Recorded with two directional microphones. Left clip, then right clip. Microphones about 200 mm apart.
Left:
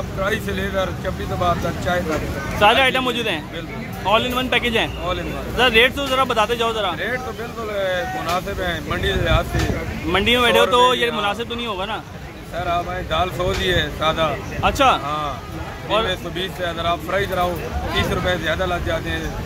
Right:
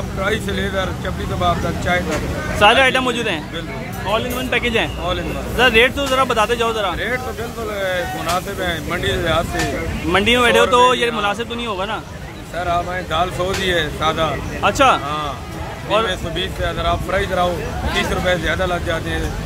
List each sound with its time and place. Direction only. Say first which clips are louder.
0.2 s speech: right 2 dB; 5° left (ahead or behind)
4.1 s speech: left 3 dB; 20° left (ahead or behind)
4.5 s speech: right 1 dB; 5° left (ahead or behind)
8.5 s speech: right 2 dB; 10° left (ahead or behind)